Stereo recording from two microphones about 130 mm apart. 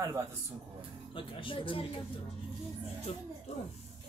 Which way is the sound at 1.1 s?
40° left (ahead or behind).